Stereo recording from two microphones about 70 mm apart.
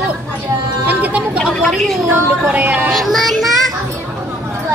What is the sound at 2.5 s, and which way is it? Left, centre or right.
Speech, right.